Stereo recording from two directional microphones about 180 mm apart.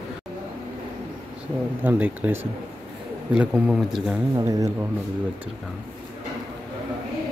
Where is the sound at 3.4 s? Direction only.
5° right (ahead or behind).